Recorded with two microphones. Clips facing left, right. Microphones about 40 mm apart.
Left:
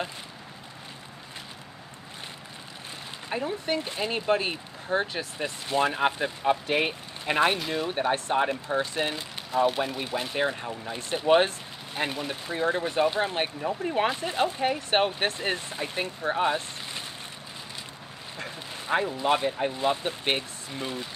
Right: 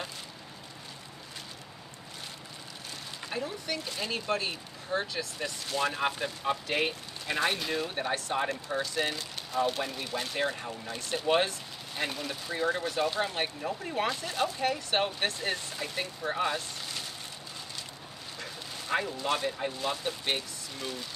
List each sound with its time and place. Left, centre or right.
3.3 s speech: left
7.2 s speech: left
7.5 s speech: centre
18.4 s speech: left